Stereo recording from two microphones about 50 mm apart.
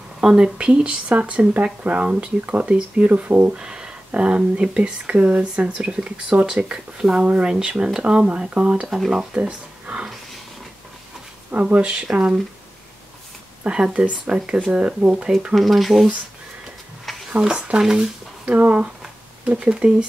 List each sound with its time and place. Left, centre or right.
0.2 s speech: centre
3.1 s speech: right
3.5 s a sound: centre
4.6 s speech: right
9.0 s speech: centre
9.3 s speech: right
11.5 s speech: right
13.7 s speech: centre
15.5 s speech: centre
17.4 s speech: centre
18.5 s speech: right